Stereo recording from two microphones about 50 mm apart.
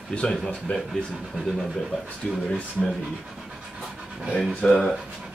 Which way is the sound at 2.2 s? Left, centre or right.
Centre.